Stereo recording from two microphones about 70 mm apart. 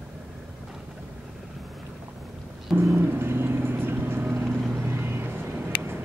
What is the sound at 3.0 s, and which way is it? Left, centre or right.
Vehicle, right.